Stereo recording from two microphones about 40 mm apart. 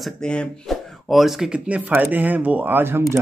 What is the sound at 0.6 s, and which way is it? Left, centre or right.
Speech, centre.